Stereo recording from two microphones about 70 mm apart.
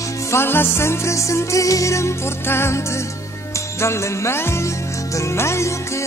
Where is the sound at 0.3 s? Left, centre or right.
Left.